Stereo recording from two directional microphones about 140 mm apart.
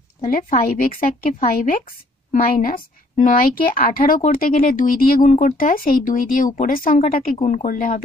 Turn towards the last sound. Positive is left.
turn(degrees=75)  # may be behind; listen again after turning